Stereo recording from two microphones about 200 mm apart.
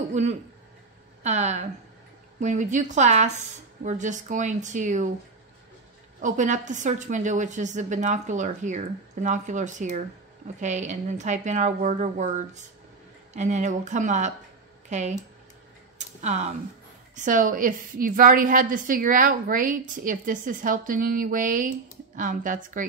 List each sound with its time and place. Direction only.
0.1 s a sound: 35° right (ahead or behind)
1.2 s a woman's voice: 35° right (ahead or behind)
6.2 s a woman's voice: 40° right (ahead or behind)
16.2 s a woman's voice: 35° right (ahead or behind)